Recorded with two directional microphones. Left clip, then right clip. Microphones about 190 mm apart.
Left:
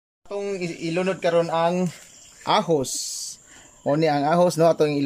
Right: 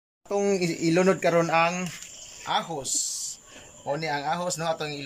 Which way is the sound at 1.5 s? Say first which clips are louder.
Left 1 dB; 25° left (ahead or behind).